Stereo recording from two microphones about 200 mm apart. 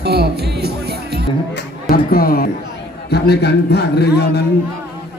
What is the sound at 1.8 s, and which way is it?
A man's voice, 50° left (ahead or behind).